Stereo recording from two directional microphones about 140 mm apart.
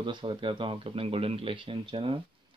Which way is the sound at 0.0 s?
35° right (ahead or behind).